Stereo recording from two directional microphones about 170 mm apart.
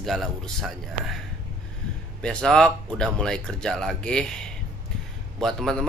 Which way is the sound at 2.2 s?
5° left (ahead or behind).